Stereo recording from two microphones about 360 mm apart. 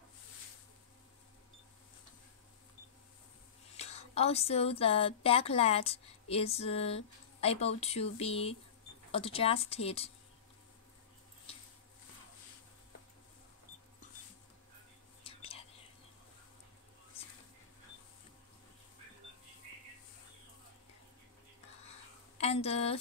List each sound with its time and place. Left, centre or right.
3.7 s a woman's voice: centre
15.2 s whispering: centre
22.4 s speech: centre